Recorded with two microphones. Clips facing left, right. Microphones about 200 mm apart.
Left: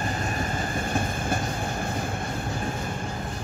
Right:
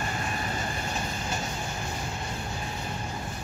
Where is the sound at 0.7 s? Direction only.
55° left (ahead or behind).